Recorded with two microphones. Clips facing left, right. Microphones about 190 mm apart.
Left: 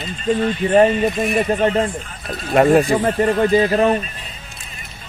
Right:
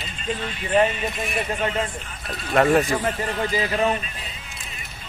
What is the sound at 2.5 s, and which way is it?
Speech, 25° left (ahead or behind).